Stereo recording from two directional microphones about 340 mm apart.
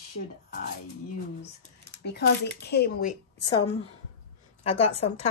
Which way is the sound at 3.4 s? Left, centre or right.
Centre.